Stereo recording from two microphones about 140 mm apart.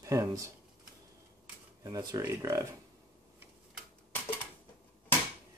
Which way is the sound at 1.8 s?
30° right (ahead or behind).